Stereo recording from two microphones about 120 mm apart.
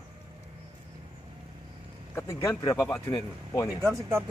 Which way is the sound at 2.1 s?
25° left (ahead or behind).